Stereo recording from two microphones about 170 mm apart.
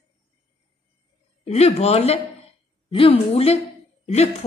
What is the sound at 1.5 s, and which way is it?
A woman's voice, 40° left (ahead or behind).